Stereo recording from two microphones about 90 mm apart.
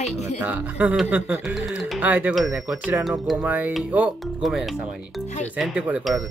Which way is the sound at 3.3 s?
15° right (ahead or behind).